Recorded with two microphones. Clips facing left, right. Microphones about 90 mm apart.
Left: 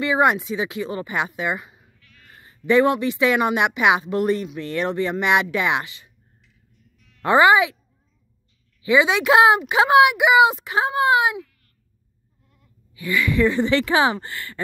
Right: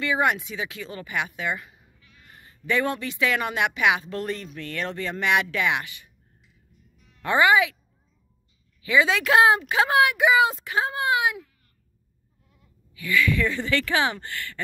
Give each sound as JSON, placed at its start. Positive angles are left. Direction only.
{"t": 0.0, "sound": "a woman's voice", "side_deg": 20}
{"t": 2.0, "sound": "sheep", "side_deg": -15}
{"t": 2.3, "sound": "a woman's voice", "side_deg": 25}
{"t": 7.2, "sound": "a woman's voice", "side_deg": 25}
{"t": 8.8, "sound": "a woman's voice", "side_deg": 20}
{"t": 12.9, "sound": "a woman's voice", "side_deg": 25}